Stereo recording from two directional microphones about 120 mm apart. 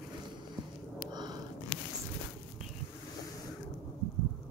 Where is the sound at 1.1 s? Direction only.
35° right (ahead or behind).